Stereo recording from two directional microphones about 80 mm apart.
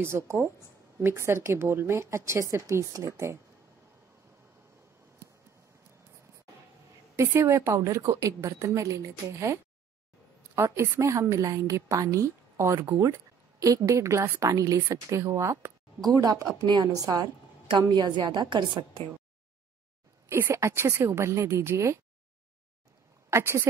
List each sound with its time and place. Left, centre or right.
0.0 s a woman's voice: right
7.2 s a woman's voice: right
14.4 s a woman's voice: right
16.0 s speech: right
16.9 s a woman's voice: right
17.6 s a woman's voice: right
20.2 s a woman's voice: right
23.3 s a woman's voice: right